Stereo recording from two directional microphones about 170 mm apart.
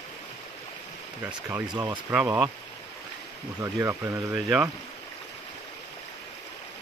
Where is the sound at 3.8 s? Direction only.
15° right (ahead or behind).